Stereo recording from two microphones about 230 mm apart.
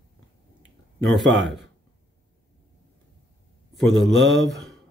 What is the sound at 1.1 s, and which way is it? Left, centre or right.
Speech, centre.